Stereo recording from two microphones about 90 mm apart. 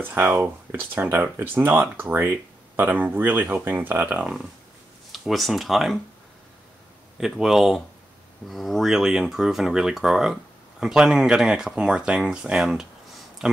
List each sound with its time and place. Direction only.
0.4 s speech: 25° right (ahead or behind)
5.1 s speech: centre (ahead or behind)
7.2 s speech: 5° right (ahead or behind)